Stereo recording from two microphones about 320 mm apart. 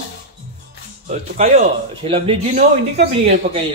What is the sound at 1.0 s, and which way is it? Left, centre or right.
Speech, right.